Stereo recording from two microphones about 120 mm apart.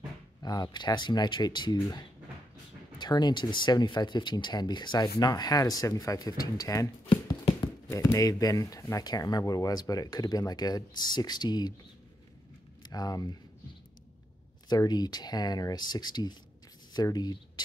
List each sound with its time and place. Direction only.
0.4 s speech: 35° left (ahead or behind)
7.1 s a sound: 40° left (ahead or behind)
7.9 s speech: 30° left (ahead or behind)
12.8 s speech: 35° left (ahead or behind)
14.7 s speech: 35° left (ahead or behind)